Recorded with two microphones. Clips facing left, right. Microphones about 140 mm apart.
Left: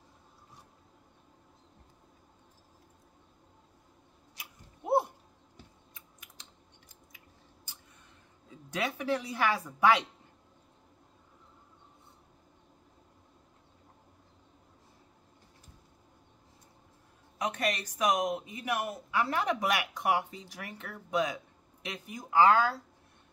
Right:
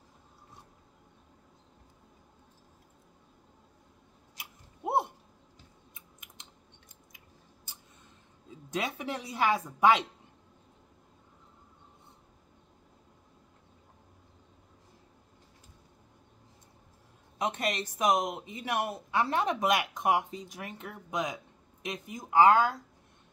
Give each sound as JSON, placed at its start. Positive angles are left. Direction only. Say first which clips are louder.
{"t": 8.6, "sound": "speech", "louder": "left 2 dB", "side_deg": -20}
{"t": 17.4, "sound": "speech", "louder": "right 1 dB", "side_deg": -25}